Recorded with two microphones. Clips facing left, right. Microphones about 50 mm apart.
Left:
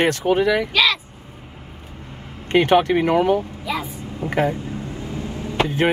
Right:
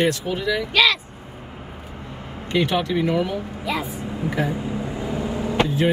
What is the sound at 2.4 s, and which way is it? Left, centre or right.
Speech, left.